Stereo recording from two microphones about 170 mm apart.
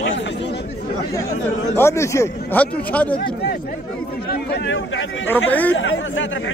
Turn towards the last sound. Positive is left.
turn(degrees=90)